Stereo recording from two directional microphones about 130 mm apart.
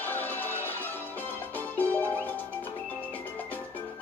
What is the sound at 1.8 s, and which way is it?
Music, 15° left (ahead or behind).